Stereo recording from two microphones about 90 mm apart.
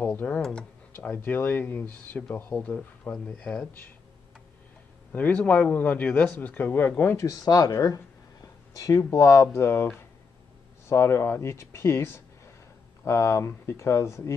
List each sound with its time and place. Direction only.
0.0 s speech: 20° left (ahead or behind)
0.9 s speech: 25° left (ahead or behind)
5.1 s speech: 20° left (ahead or behind)
7.0 s speech: 30° left (ahead or behind)
10.9 s speech: 30° left (ahead or behind)